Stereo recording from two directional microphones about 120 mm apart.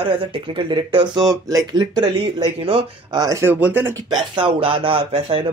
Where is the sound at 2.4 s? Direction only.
50° right (ahead or behind).